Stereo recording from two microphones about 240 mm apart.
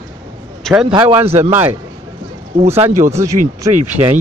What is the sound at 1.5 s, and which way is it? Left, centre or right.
Speech, centre.